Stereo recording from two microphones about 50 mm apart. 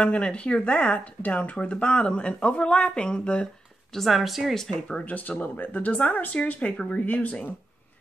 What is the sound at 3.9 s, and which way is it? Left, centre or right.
Speech, centre.